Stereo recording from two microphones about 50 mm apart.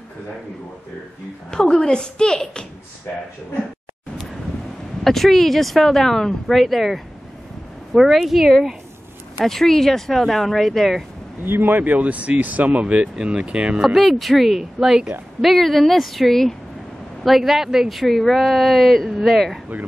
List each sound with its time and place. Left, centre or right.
1.5 s a woman's voice: centre
5.0 s speech: centre
7.9 s speech: centre
11.4 s speech: right
13.7 s speech: centre
14.8 s a woman's voice: centre
15.4 s speech: centre